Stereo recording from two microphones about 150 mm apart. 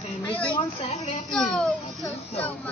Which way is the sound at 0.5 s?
45° left (ahead or behind).